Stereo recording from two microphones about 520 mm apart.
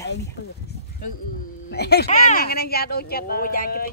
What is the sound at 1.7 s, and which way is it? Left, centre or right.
Speech, centre.